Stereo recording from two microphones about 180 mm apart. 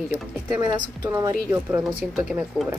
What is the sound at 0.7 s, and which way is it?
Speech, 20° right (ahead or behind).